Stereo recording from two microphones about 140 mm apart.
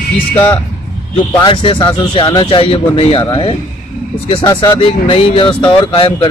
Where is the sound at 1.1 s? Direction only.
35° left (ahead or behind).